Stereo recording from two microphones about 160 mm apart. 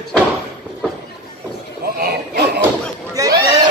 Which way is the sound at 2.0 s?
80° right.